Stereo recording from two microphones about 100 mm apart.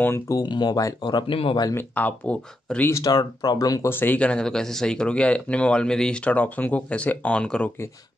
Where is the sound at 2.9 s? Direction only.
40° left (ahead or behind).